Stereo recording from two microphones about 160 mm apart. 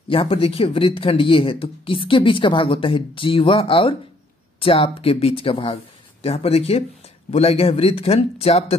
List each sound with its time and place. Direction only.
0.1 s speech: 35° left (ahead or behind)